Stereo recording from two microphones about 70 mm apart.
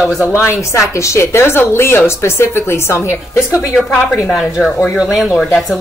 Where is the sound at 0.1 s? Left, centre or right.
Right.